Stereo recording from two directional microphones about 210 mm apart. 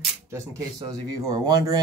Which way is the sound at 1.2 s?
20° right (ahead or behind).